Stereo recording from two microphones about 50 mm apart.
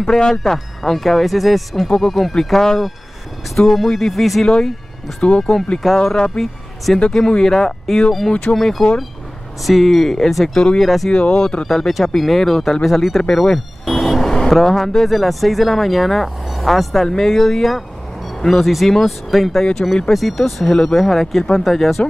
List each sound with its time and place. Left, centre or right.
0.0 s speech: centre
8.3 s speech: left
8.5 s speech: centre
11.1 s speech: centre
20.7 s speech: centre
21.0 s speech: centre